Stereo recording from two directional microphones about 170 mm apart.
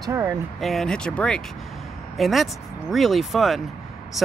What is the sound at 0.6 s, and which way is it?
Speech, centre (ahead or behind).